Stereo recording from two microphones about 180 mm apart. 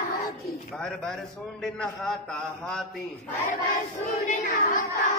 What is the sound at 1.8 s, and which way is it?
A man's voice, 5° left (ahead or behind).